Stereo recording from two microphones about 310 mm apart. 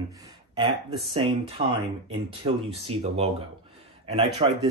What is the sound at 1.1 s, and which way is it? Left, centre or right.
Speech, centre.